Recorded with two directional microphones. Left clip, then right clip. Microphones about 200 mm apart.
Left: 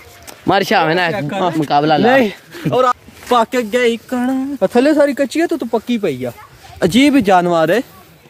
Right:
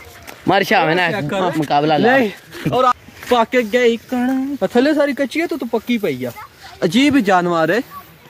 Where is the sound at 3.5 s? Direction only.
25° left (ahead or behind); by 6.3 s 55° left (ahead or behind).